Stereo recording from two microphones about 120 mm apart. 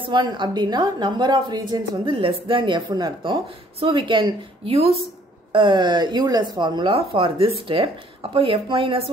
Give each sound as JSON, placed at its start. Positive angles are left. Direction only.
{"t": 0.1, "sound": "a woman's voice", "side_deg": -40}
{"t": 4.7, "sound": "speech", "side_deg": -50}
{"t": 5.5, "sound": "speech", "side_deg": -40}